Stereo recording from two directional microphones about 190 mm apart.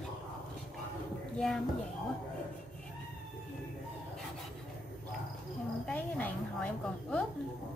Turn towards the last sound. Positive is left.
turn(degrees=10)  # may be behind; listen again after turning